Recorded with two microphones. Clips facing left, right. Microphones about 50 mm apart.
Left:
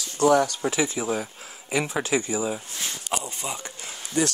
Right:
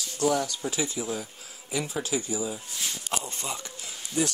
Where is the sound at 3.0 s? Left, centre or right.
Centre.